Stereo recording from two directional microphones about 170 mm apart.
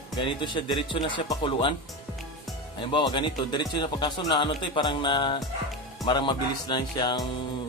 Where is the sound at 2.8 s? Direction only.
30° left (ahead or behind).